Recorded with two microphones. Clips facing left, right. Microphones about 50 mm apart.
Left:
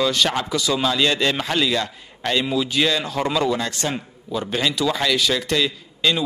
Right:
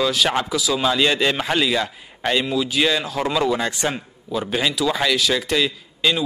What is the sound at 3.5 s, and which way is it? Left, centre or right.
Speech, centre.